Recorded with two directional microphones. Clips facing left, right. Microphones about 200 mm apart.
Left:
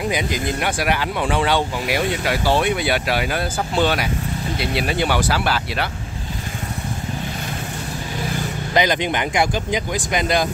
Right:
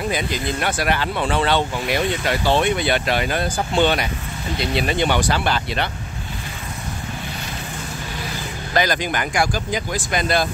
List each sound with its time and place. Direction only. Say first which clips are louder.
0.1 s speech: left 1 dB; 15° left (ahead or behind)
8.7 s speech: left 2 dB; 20° left (ahead or behind)